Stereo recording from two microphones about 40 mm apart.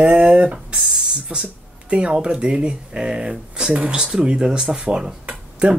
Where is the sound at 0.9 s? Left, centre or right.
Right.